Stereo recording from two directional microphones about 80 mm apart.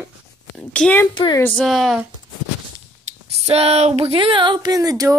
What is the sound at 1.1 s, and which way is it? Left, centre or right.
Speech, left.